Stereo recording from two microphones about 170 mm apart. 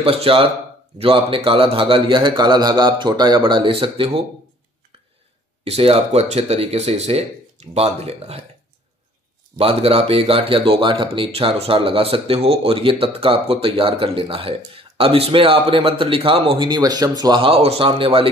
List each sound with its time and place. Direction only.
0.0 s a man's voice: 35° right (ahead or behind)
5.6 s speech: 35° right (ahead or behind)
9.6 s speech: 35° right (ahead or behind)